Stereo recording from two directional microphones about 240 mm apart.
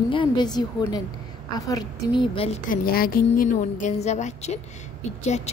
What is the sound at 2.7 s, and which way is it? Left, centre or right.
Speech, left.